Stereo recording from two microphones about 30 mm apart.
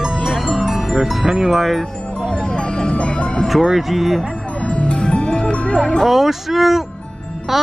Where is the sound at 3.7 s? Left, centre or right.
Centre.